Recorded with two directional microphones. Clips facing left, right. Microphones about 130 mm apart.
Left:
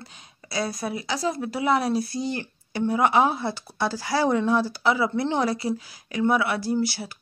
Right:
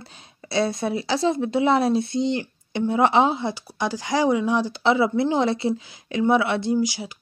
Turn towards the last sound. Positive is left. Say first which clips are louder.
# right 3 dB
turn(degrees=-15)  # may be behind; listen again after turning